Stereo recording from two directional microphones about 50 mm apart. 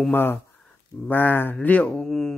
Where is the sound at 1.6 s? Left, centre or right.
Left.